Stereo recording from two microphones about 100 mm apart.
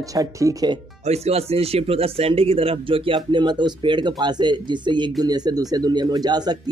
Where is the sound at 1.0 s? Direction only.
90° right.